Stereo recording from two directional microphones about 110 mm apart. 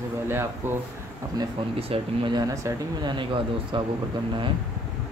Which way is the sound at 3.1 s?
50° right (ahead or behind).